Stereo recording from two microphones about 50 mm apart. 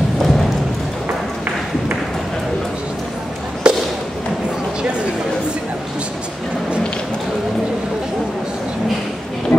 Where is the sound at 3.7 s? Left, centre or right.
Centre.